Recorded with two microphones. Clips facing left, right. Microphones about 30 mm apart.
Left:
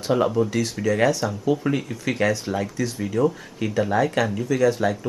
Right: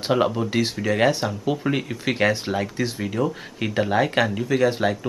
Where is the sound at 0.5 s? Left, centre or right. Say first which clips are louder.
Even; right.